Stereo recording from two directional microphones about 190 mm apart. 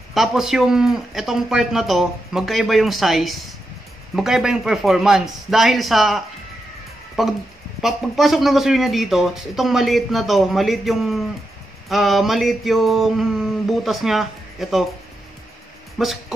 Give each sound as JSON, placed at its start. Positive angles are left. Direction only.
{"t": 0.1, "sound": "speech", "side_deg": 0}
{"t": 16.0, "sound": "speech", "side_deg": 0}